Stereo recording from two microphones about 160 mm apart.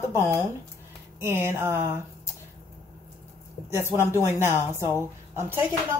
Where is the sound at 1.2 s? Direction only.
15° right (ahead or behind).